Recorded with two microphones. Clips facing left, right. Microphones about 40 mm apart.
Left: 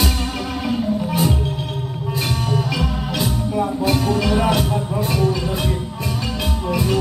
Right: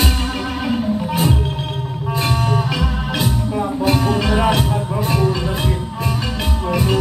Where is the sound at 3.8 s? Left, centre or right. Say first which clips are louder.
Right 3 dB; right.